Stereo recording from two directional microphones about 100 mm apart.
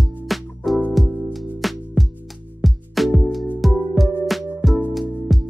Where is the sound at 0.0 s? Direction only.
Centre (ahead or behind).